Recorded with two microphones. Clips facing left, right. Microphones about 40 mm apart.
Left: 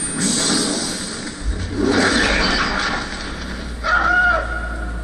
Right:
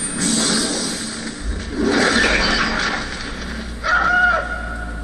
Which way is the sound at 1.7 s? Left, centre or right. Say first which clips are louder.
Even; centre.